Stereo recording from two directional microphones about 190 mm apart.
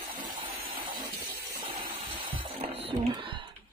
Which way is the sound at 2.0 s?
30° right (ahead or behind).